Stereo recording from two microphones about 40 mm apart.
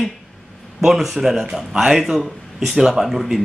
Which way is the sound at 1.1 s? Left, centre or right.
Centre.